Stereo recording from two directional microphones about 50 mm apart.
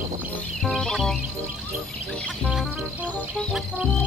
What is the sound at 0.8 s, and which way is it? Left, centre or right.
Music, centre.